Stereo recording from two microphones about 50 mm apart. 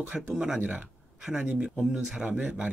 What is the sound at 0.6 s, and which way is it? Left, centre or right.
Speech, right.